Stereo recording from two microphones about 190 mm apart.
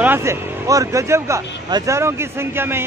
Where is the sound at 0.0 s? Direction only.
15° right (ahead or behind).